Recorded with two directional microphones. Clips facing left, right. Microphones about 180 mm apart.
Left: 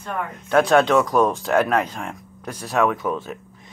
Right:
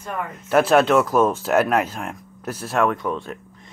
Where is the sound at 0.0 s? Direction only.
5° right (ahead or behind).